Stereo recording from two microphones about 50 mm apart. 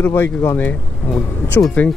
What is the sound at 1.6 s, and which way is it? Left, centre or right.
Speech, left.